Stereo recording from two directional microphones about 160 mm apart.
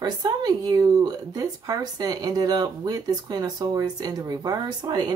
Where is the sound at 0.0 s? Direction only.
25° right (ahead or behind).